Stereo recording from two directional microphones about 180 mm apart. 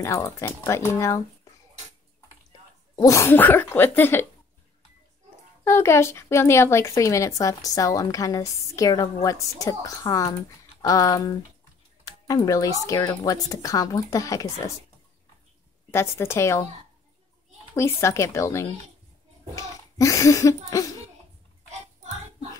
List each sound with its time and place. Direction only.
0.0 s speech: 15° left (ahead or behind)
3.0 s speech: 15° left (ahead or behind)
5.6 s speech: 15° left (ahead or behind)
12.0 s a sound: 20° left (ahead or behind)
12.8 s speech: 20° left (ahead or behind)
15.9 s speech: 15° left (ahead or behind)
17.7 s speech: 15° left (ahead or behind)